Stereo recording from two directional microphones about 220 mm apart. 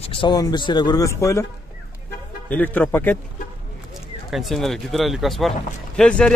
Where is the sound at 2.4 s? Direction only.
10° left (ahead or behind).